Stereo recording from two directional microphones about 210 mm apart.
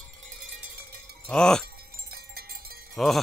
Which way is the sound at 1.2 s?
5° left (ahead or behind).